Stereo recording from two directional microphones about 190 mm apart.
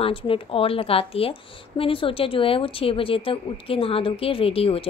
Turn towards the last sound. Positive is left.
turn(degrees=30)  # may be behind; listen again after turning